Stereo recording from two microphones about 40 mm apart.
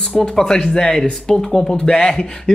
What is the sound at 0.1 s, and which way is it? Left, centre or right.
Speech, left.